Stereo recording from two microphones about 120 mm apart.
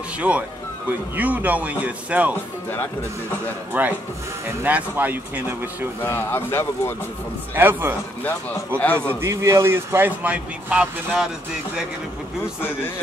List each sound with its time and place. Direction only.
0.3 s speech: 10° right (ahead or behind)
3.7 s speech: 15° right (ahead or behind)
6.0 s a man's voice: 20° left (ahead or behind)
7.5 s a man's voice: 20° right (ahead or behind)
8.2 s speech: 15° left (ahead or behind)
8.9 s a man's voice: 20° right (ahead or behind)